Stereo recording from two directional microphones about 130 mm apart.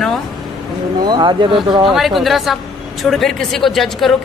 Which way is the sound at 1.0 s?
35° right (ahead or behind).